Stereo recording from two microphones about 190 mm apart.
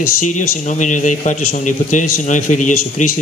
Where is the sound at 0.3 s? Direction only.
40° left (ahead or behind).